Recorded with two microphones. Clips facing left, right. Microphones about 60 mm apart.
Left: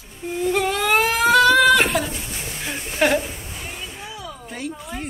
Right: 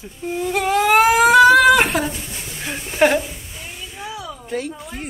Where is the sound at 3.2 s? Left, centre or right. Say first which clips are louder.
Even; centre.